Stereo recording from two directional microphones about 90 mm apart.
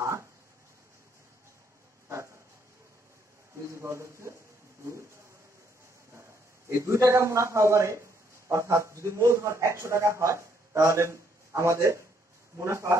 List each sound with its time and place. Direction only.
3.6 s speech: 30° right (ahead or behind)
6.8 s a man's voice: 35° right (ahead or behind)